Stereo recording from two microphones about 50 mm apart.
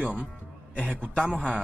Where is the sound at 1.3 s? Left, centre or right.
Right.